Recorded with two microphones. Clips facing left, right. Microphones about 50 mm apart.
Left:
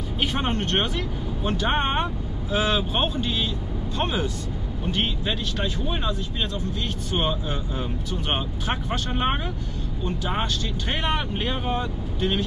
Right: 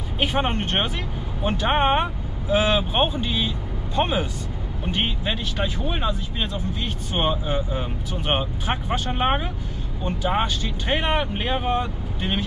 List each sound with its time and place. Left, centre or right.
0.2 s speech: centre